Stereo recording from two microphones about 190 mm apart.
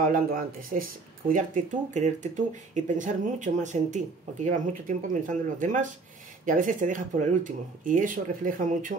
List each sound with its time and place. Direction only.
0.1 s speech: 50° right (ahead or behind)